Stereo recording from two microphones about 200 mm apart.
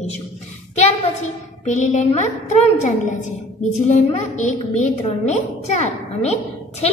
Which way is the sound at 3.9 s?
35° left (ahead or behind).